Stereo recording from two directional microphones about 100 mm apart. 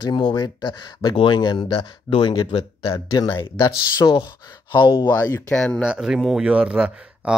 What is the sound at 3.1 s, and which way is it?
Speech, 40° left (ahead or behind).